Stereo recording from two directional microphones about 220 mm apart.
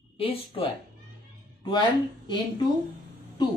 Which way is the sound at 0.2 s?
25° left (ahead or behind).